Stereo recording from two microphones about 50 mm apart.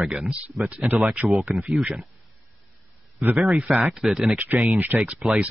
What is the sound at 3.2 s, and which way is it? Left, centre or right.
Speech, right.